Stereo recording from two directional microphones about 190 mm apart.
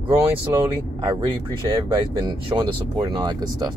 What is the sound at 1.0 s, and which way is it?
Speech, 20° right (ahead or behind).